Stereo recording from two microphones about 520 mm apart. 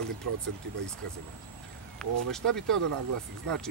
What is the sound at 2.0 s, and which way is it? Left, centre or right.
Speech, centre.